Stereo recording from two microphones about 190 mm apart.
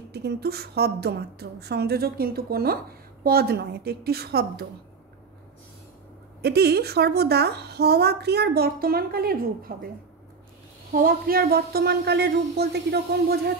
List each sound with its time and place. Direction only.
0.1 s a woman's voice: 60° right (ahead or behind)
6.4 s a woman's voice: 60° right (ahead or behind)
10.9 s a woman's voice: 45° right (ahead or behind)